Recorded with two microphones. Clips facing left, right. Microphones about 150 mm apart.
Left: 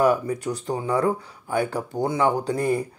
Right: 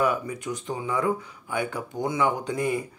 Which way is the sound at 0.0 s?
35° left (ahead or behind).